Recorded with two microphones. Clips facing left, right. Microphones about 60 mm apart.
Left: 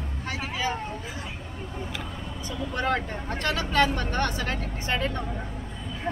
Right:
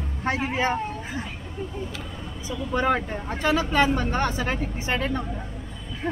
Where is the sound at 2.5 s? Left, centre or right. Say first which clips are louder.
Right 4 dB; centre.